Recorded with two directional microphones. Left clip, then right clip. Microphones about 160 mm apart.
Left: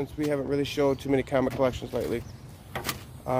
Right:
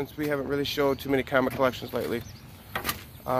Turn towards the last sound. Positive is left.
turn(degrees=15)  # may be behind; listen again after turning